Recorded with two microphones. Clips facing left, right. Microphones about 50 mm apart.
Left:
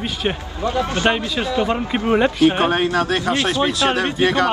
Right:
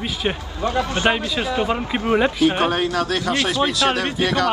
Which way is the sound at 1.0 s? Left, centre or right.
Right.